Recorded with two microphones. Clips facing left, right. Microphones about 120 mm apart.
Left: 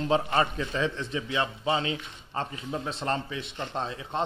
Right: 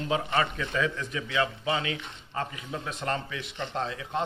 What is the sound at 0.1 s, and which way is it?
A man's voice, 30° left (ahead or behind).